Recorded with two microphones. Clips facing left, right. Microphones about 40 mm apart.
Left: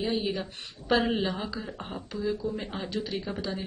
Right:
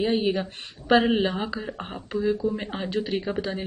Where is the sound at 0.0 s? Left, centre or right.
Right.